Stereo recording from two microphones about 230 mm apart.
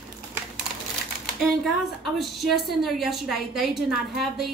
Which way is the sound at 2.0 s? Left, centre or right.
Centre.